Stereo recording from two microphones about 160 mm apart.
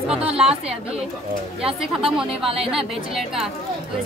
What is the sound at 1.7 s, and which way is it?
Speech, 35° right (ahead or behind).